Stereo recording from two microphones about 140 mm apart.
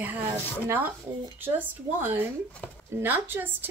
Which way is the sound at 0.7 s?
15° right (ahead or behind).